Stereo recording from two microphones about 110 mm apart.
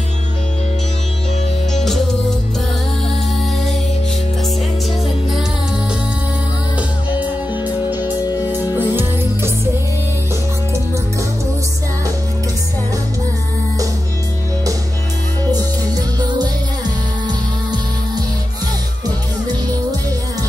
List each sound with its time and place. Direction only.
7.2 s music: 15° right (ahead or behind)